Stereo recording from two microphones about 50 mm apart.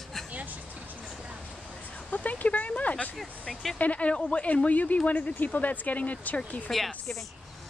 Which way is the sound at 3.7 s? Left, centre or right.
Left.